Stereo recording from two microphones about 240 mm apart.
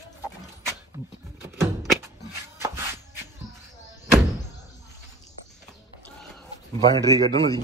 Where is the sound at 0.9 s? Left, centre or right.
Centre.